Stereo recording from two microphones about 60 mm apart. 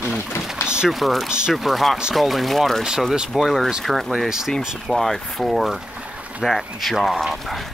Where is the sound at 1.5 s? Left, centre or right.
Centre.